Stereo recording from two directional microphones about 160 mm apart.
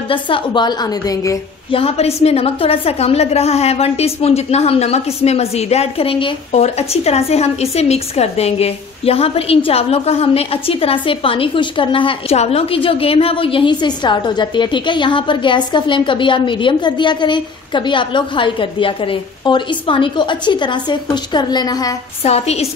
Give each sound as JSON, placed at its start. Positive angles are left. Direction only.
{"t": 0.1, "sound": "a woman's voice", "side_deg": 30}
{"t": 1.7, "sound": "a woman's voice", "side_deg": 35}
{"t": 22.2, "sound": "a woman's voice", "side_deg": 40}